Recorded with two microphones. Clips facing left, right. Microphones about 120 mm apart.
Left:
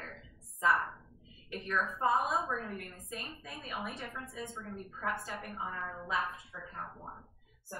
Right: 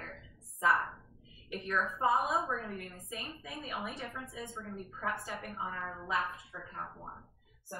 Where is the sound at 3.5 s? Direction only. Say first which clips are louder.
Right 2 dB; 20° right (ahead or behind).